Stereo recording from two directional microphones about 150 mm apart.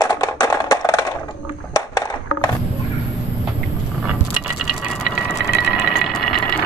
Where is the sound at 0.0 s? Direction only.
25° left (ahead or behind).